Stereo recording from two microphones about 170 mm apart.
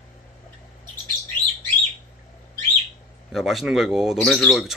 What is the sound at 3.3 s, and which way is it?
Speech, centre (ahead or behind).